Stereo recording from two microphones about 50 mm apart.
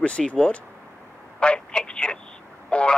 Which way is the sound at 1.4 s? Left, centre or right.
Centre.